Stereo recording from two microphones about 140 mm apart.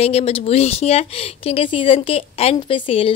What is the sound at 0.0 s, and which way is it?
A woman's voice, 45° left (ahead or behind).